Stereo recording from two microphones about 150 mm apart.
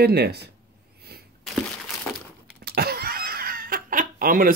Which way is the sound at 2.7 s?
90° right.